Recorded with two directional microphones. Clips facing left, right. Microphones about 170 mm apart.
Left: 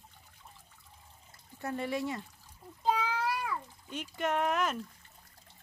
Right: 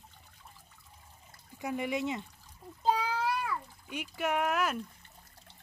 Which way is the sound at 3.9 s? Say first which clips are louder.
Even; 10° right (ahead or behind).